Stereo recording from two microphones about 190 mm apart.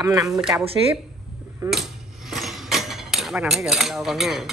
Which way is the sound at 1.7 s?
Centre (ahead or behind).